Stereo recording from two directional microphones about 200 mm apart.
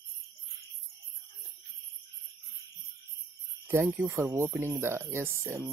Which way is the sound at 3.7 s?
10° right (ahead or behind).